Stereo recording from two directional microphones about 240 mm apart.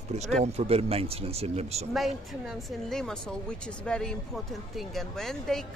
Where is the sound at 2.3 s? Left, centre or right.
Centre.